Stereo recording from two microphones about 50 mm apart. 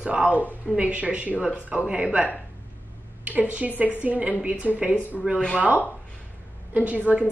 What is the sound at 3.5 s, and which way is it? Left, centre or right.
A woman's voice, right.